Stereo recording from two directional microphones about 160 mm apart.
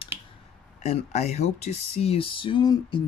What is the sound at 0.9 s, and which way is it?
Speech, 45° left (ahead or behind).